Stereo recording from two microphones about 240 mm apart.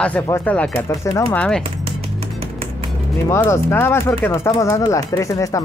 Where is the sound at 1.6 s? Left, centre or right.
Right.